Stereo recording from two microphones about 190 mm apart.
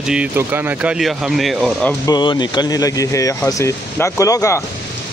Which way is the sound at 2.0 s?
25° left (ahead or behind).